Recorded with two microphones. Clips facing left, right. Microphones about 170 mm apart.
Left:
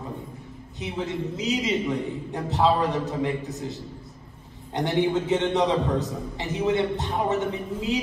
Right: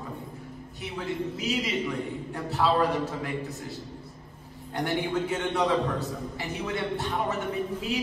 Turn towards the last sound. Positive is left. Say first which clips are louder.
# left 2 dB
turn(degrees=20)  # may be behind; listen again after turning